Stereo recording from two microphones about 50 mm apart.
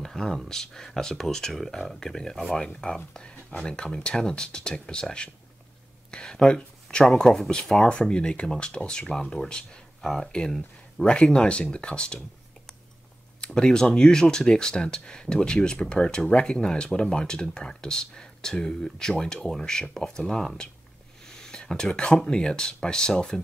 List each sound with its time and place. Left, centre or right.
0.0 s speech: centre
6.1 s a sound: centre
7.1 s speech: centre
13.6 s speech: centre